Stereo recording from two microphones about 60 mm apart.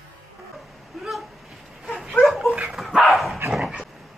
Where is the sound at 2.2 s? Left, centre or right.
Centre.